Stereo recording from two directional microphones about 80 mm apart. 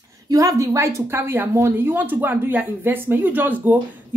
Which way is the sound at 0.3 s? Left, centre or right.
Right.